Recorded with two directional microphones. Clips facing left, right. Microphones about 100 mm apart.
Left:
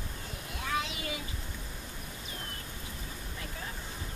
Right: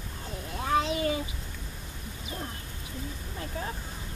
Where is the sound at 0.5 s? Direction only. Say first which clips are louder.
Right 8 dB; 35° right (ahead or behind).